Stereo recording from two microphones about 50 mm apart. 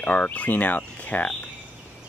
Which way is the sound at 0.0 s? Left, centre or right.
Left.